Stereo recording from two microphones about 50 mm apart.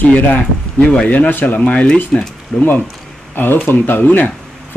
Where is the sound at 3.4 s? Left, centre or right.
Left.